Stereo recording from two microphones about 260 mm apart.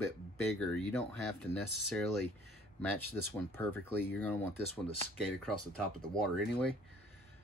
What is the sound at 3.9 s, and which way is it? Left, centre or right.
Speech, right.